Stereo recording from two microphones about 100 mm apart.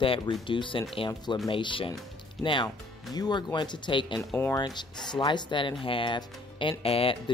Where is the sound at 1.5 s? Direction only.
60° left (ahead or behind).